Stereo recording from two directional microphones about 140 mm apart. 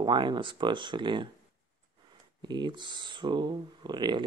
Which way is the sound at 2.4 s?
30° right (ahead or behind).